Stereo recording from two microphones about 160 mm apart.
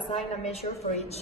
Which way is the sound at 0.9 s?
40° left (ahead or behind).